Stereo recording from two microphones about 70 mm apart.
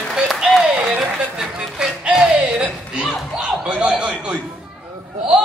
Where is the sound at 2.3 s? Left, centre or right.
Centre.